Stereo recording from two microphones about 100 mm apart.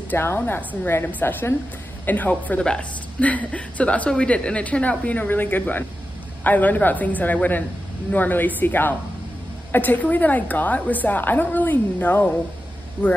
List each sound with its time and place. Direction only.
0.1 s speech: 20° left (ahead or behind)